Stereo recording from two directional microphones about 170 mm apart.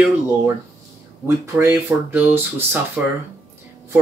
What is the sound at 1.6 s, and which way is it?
Speech, 15° right (ahead or behind).